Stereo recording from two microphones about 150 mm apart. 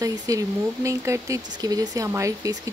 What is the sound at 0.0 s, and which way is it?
Speech, 25° right (ahead or behind).